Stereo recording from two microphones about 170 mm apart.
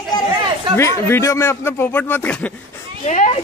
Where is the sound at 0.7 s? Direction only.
15° left (ahead or behind).